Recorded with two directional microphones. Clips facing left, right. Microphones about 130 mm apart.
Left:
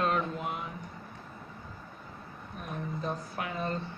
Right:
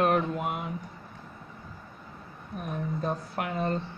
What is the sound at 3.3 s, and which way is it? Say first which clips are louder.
Speech: right 4 dB; 60° right (ahead or behind).